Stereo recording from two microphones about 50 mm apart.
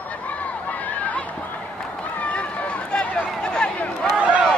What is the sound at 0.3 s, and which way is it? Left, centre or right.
Chatter, left.